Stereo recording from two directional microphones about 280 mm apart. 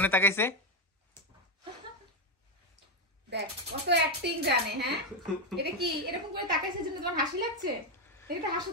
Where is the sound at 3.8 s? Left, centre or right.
Right.